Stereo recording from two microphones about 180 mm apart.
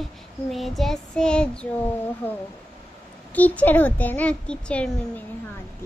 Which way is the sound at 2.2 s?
10° left (ahead or behind).